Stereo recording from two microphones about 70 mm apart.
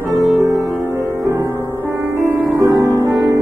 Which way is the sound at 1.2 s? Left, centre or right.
Right.